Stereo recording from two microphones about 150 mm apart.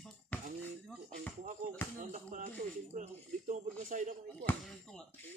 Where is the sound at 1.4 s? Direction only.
65° right (ahead or behind).